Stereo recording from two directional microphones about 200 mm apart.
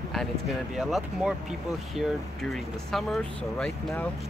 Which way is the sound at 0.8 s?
Centre (ahead or behind).